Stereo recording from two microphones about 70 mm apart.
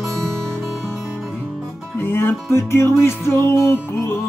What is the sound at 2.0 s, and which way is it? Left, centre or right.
Music, left.